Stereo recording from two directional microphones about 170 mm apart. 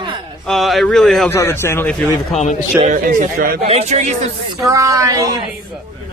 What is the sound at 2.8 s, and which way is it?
Speech, 55° right (ahead or behind).